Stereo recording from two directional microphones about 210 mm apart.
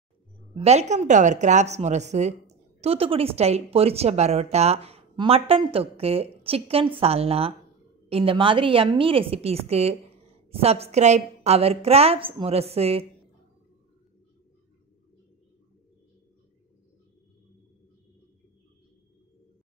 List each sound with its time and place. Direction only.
0.6 s speech: 30° right (ahead or behind)